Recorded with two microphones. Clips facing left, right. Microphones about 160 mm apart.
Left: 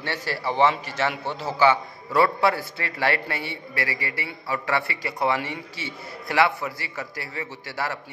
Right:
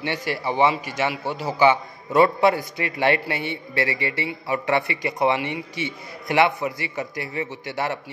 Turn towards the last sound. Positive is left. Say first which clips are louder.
# right 3 dB
turn(degrees=-20)  # may be behind; listen again after turning